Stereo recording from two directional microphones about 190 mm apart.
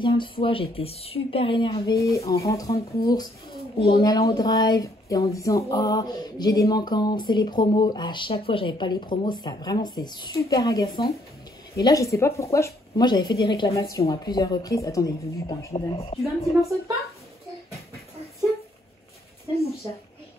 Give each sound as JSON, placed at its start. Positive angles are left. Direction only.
{"t": 0.0, "sound": "speech", "side_deg": 25}
{"t": 3.7, "sound": "speech", "side_deg": 30}